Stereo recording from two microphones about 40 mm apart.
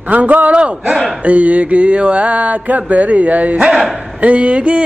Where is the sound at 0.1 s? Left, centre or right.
Right.